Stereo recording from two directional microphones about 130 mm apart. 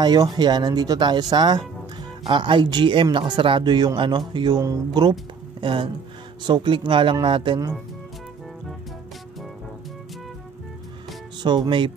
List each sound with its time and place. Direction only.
0.0 s speech: 30° right (ahead or behind)
5.6 s speech: 40° right (ahead or behind)
11.4 s speech: 35° right (ahead or behind)